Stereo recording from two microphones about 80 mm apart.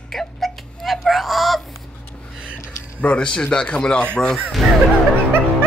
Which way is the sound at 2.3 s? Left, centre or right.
Centre.